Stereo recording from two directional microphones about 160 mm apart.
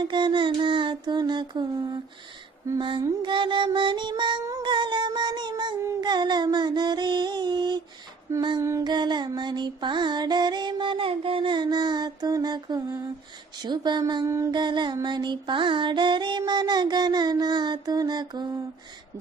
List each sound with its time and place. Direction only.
0.1 s carnatic music: 30° right (ahead or behind)